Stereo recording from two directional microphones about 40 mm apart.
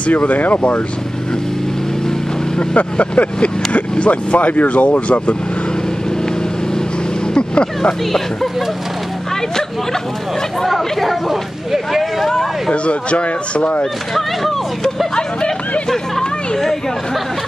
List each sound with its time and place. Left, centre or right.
0.0 s speech: left
2.7 s speech: left
7.3 s speech: left
10.6 s speech: centre
11.7 s vehicle: centre
12.3 s a sound: centre
12.8 s speech: left
14.1 s speech: centre